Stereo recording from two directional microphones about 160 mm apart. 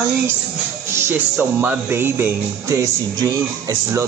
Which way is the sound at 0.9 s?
10° right (ahead or behind).